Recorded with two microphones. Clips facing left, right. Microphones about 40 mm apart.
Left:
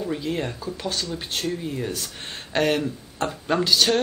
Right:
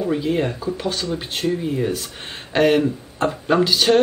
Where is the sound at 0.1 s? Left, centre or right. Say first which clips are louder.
Right 6 dB; centre.